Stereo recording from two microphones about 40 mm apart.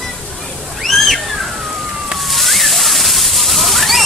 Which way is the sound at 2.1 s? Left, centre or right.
Centre.